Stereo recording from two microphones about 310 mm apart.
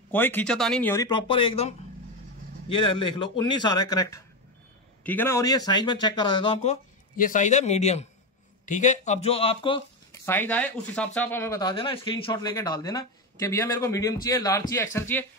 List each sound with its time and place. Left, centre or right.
0.1 s speech: centre
10.2 s speech: centre